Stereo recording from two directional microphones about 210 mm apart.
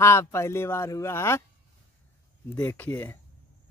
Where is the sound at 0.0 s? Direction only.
15° left (ahead or behind).